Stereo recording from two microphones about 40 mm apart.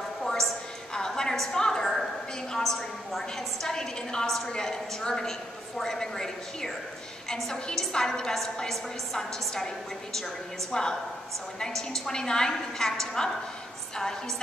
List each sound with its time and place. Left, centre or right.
0.2 s a sound: centre
2.5 s a woman's voice: centre
3.6 s a woman's voice: centre